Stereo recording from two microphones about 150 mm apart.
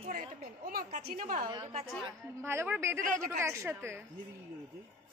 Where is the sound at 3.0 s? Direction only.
60° right (ahead or behind).